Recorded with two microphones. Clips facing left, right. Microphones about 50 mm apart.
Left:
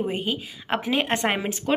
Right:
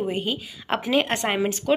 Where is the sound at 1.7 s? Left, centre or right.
Left.